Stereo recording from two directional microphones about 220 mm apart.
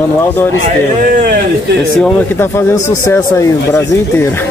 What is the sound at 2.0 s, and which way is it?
Speech, 10° left (ahead or behind).